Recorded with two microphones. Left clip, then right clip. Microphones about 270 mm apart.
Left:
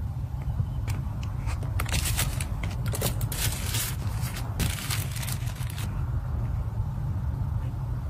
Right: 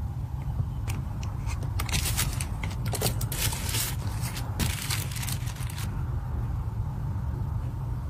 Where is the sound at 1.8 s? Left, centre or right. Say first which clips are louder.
Even; centre.